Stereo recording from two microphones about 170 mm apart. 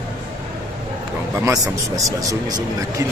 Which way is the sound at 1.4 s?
20° right (ahead or behind).